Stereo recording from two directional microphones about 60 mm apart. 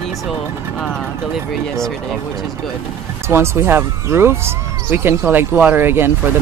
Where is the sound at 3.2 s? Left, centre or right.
Right.